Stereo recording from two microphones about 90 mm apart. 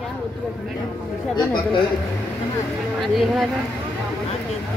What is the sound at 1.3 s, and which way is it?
Speech, 60° left (ahead or behind).